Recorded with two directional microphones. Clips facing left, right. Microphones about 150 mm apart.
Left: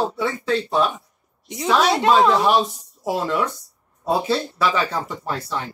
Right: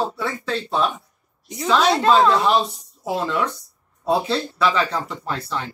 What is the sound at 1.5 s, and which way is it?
A woman's voice, 15° left (ahead or behind).